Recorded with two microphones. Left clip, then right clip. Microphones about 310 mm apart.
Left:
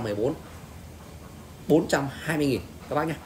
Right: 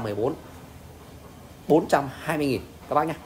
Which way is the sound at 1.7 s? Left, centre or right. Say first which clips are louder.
Right 2 dB; centre.